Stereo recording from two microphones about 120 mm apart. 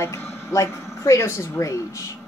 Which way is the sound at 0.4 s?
25° left (ahead or behind).